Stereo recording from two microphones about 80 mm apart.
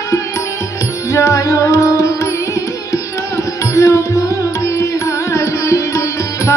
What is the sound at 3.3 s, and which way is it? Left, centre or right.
Music, left.